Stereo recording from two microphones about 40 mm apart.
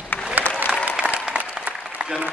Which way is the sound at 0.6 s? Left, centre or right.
Right.